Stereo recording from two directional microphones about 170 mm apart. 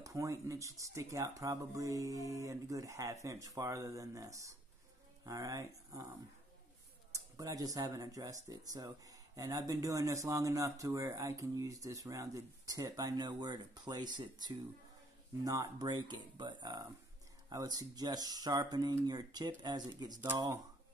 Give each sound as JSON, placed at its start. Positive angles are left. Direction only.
{"t": 0.0, "sound": "speech", "side_deg": -20}